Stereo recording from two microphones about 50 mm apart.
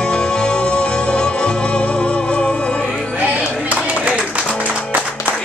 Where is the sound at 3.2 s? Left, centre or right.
Right.